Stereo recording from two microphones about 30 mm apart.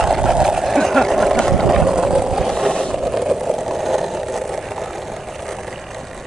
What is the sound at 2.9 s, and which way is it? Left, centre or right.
Vehicle, centre.